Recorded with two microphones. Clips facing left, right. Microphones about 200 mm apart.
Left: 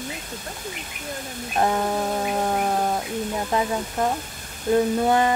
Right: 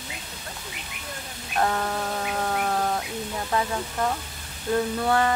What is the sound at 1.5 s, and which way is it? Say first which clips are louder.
Speech: left 3 dB; 20° left (ahead or behind).